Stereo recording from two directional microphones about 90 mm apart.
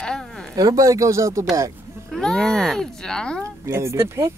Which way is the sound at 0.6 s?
40° right (ahead or behind).